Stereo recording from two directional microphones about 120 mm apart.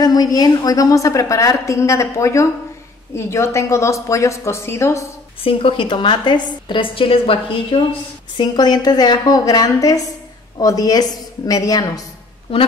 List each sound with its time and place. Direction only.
0.0 s a woman's voice: 30° left (ahead or behind)
5.4 s a woman's voice: 50° left (ahead or behind)
8.4 s a woman's voice: 35° left (ahead or behind)
12.5 s a woman's voice: 50° left (ahead or behind)